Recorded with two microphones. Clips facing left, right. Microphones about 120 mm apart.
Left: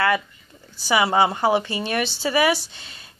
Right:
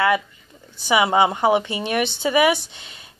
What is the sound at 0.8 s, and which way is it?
A woman's voice, 20° right (ahead or behind).